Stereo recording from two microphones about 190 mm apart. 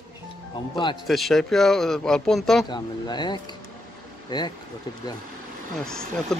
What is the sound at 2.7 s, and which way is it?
Speech, 25° left (ahead or behind).